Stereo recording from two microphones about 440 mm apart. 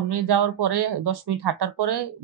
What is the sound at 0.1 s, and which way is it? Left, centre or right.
Speech, right.